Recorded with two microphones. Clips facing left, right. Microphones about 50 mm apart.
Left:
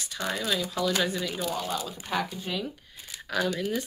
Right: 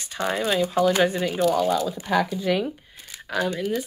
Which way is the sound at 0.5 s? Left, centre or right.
Right.